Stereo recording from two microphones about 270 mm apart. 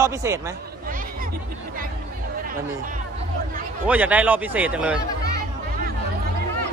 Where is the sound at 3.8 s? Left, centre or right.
Centre.